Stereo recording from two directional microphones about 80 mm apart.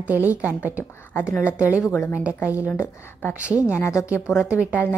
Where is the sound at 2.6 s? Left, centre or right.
Left.